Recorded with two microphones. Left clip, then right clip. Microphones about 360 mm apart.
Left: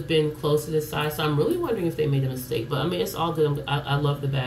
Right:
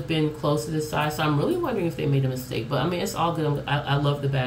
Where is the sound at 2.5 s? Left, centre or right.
Centre.